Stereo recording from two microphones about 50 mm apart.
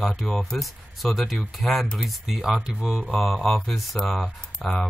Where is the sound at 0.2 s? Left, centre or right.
Centre.